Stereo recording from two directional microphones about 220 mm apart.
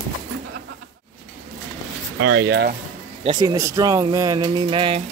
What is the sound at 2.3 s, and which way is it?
Speech, 50° right (ahead or behind).